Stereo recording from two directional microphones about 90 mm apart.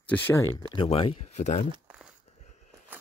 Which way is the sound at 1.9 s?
10° right (ahead or behind).